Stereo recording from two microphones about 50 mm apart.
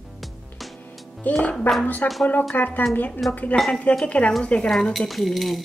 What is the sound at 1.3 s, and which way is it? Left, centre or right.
A woman's voice, left.